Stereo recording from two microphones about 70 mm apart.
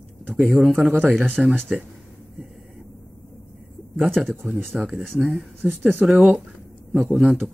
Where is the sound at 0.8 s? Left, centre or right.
Right.